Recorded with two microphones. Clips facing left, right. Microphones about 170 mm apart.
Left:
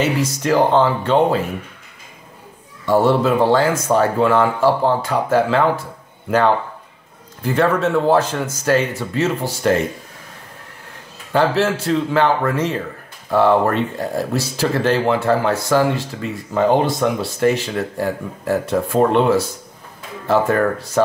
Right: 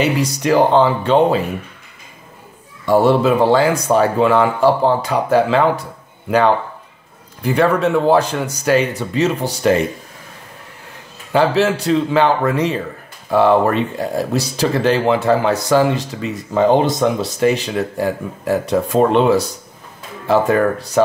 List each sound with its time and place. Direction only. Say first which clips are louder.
0.4 s speech: right 2 dB; 15° right (ahead or behind)
2.9 s speech: right 2 dB; 15° right (ahead or behind)
7.4 s speech: right 2 dB; 15° right (ahead or behind)
11.3 s speech: right 2 dB; 15° right (ahead or behind)